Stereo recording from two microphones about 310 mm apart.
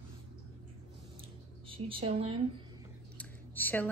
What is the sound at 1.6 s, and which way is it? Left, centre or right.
Speech, centre.